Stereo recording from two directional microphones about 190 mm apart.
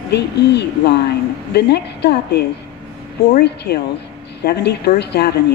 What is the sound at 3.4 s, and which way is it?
A woman's voice, 60° left (ahead or behind).